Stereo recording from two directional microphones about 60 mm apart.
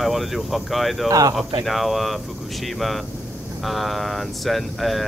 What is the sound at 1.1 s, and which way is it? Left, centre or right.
Speech, right.